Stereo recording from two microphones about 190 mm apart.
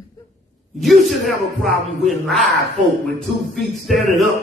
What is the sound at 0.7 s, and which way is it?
A man's voice, centre (ahead or behind).